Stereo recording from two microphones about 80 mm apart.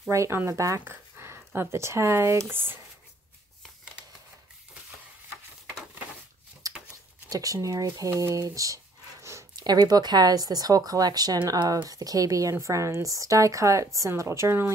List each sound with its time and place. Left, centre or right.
0.1 s speech: right
0.7 s speech: right
6.6 s a sound: right
7.2 s speech: right
9.6 s a woman's voice: right